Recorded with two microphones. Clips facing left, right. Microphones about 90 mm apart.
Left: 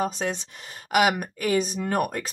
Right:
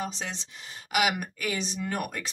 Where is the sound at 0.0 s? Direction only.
50° left (ahead or behind).